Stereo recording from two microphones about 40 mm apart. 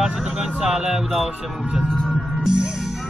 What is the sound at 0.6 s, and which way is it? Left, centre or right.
Speech, centre.